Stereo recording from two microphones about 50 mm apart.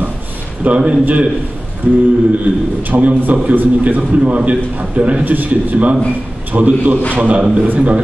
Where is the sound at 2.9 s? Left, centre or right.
Right.